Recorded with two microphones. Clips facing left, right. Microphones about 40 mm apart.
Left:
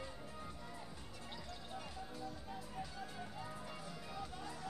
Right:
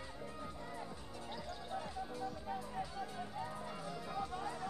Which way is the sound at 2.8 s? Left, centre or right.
Centre.